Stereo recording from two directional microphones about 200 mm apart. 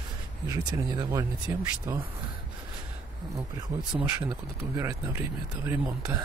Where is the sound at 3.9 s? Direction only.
10° right (ahead or behind).